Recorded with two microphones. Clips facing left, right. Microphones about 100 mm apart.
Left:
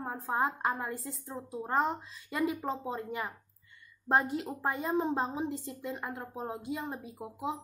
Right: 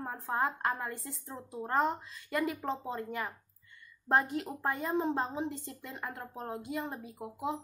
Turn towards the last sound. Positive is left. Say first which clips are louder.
# even
turn(degrees=0)  # may be behind; listen again after turning